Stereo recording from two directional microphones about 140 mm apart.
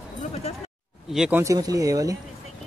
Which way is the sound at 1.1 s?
5° right (ahead or behind).